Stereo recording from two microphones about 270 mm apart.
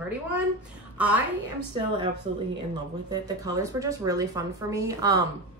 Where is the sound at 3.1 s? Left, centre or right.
Centre.